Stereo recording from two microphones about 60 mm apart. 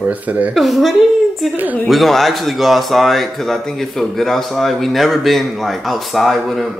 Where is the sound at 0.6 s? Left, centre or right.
Centre.